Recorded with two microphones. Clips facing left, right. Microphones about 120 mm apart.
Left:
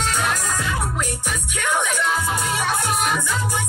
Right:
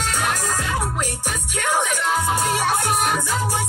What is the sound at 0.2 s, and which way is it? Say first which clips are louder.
Music: even; 40° right (ahead or behind).